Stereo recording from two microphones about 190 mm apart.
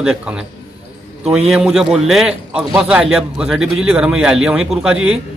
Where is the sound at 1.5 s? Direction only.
5° right (ahead or behind).